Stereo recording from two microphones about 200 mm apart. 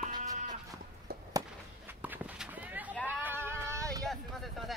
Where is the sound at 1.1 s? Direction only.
50° right (ahead or behind).